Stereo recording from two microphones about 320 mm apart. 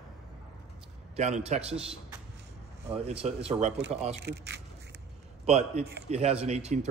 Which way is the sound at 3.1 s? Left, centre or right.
Centre.